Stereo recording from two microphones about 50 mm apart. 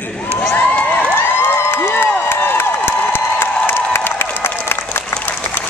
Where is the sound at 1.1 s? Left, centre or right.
Left.